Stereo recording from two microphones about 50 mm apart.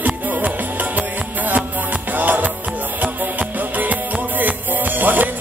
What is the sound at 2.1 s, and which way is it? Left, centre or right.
Music, right.